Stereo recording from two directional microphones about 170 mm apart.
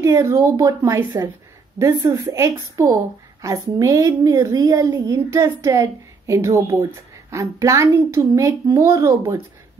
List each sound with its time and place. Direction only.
0.0 s a woman's voice: 15° right (ahead or behind)